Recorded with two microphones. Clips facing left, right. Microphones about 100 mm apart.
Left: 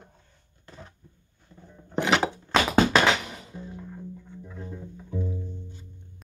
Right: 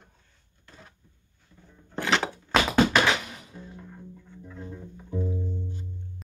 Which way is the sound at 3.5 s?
5° left (ahead or behind).